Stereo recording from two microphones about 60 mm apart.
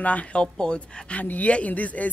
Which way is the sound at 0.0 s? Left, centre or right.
Left.